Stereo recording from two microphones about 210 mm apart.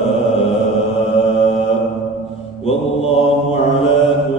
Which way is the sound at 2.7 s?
30° left (ahead or behind).